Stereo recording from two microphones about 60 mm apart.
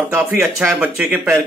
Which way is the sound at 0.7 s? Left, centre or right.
Right.